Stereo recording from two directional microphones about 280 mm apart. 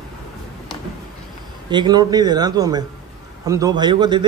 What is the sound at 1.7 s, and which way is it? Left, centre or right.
Speech, centre.